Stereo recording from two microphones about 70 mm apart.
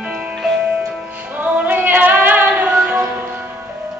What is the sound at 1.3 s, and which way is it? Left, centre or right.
Female singing, right.